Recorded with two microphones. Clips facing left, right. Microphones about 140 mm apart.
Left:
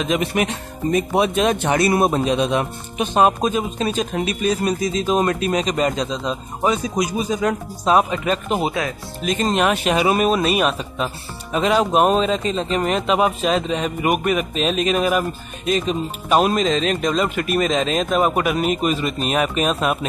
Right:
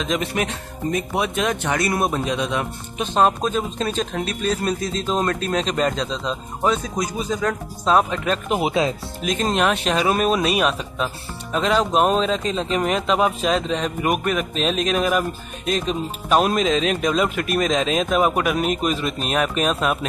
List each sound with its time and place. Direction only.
0.0 s speech: 10° left (ahead or behind)
0.9 s speech: 25° left (ahead or behind)
3.4 s a man's voice: 10° left (ahead or behind)